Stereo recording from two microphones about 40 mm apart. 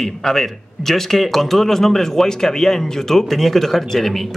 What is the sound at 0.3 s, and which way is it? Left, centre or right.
A man's voice, centre.